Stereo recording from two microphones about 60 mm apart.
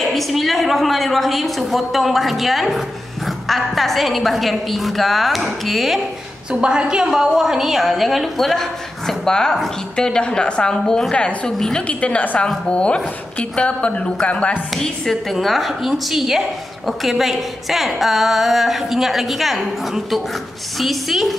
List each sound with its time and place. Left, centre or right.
0.1 s a woman's voice: centre
6.5 s a woman's voice: centre
12.0 s a woman's voice: left
14.8 s a woman's voice: centre